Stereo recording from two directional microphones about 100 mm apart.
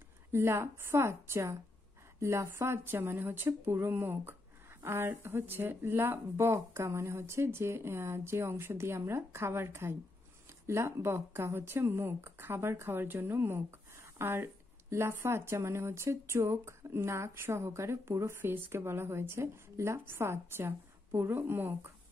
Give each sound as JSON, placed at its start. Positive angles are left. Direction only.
{"t": 0.3, "sound": "speech", "side_deg": -25}